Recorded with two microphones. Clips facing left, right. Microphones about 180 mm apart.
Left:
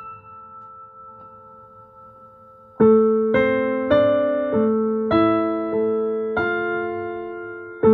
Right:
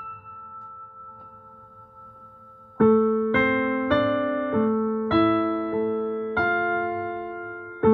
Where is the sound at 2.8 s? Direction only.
50° left (ahead or behind).